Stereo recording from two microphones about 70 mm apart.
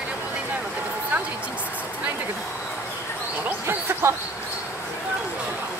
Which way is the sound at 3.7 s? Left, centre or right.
Right.